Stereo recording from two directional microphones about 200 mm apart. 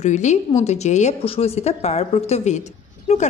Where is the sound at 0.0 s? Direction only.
35° left (ahead or behind).